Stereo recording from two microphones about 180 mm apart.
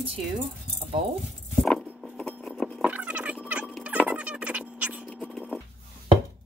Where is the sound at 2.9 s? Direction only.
10° right (ahead or behind).